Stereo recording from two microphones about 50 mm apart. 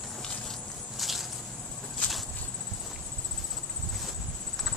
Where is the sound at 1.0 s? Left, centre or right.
Centre.